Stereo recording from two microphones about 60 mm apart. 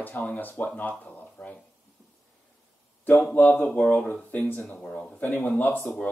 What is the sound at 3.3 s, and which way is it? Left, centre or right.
Speech, left.